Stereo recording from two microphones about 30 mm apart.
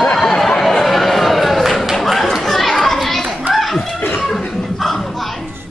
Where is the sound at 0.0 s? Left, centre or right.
Centre.